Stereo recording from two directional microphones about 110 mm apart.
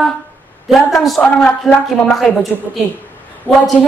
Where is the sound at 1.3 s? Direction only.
10° left (ahead or behind).